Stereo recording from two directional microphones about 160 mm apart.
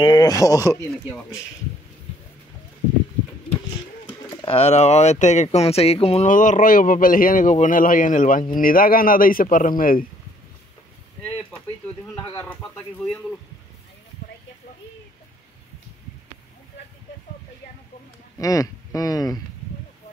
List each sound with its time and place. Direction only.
0.0 s speech: 25° left (ahead or behind)
4.3 s speech: 35° left (ahead or behind)
6.3 s speech: 55° left (ahead or behind)
18.4 s speech: 20° left (ahead or behind)